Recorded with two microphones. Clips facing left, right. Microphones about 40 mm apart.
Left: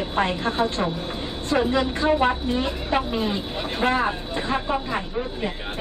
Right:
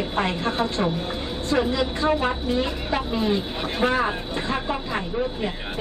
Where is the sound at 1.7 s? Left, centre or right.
Left.